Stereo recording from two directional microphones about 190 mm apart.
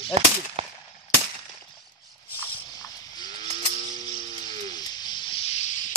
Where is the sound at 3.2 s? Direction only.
35° right (ahead or behind).